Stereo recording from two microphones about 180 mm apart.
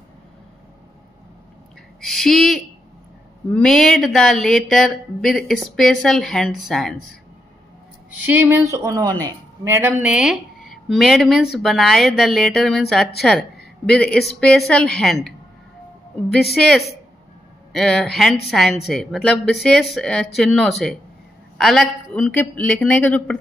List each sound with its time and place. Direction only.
2.0 s speech: centre (ahead or behind)
8.3 s a woman's voice: 15° right (ahead or behind); by 15.1 s 5° left (ahead or behind)
16.5 s a man's voice: centre (ahead or behind)